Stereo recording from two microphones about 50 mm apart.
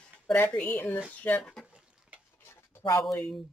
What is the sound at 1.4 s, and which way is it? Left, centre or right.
Speech, centre.